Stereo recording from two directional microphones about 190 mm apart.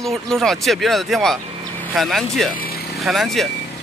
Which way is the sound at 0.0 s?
Centre (ahead or behind).